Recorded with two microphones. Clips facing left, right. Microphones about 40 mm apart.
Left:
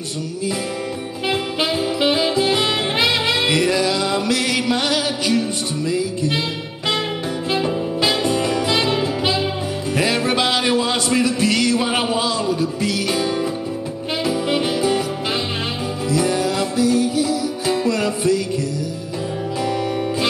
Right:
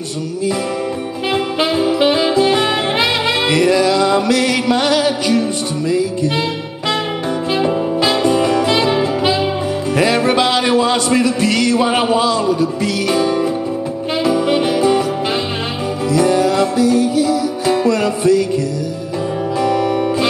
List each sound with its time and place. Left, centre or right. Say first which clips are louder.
1.3 s saxophone: right 5 dB; centre
7.5 s music: right 5 dB; centre
14.3 s music: right 5 dB; centre
16.1 s music: right 6 dB; centre
19.9 s music: right 5 dB; centre